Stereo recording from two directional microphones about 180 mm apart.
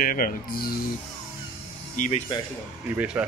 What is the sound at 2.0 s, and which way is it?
Speech, 45° left (ahead or behind).